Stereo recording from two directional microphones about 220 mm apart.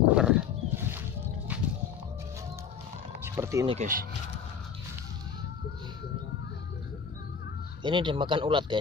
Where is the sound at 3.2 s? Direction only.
15° right (ahead or behind).